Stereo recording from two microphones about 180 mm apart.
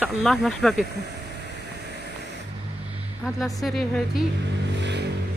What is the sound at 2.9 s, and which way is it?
Vehicle, centre (ahead or behind).